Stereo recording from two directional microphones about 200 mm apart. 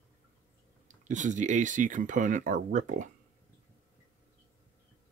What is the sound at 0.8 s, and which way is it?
Speech, 40° right (ahead or behind).